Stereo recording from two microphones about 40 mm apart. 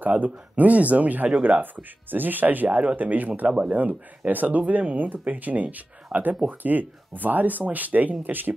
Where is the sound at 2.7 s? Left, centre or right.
Right.